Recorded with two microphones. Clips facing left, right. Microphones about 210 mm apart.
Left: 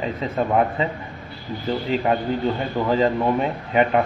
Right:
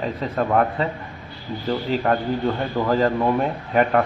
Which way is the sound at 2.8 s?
Centre (ahead or behind).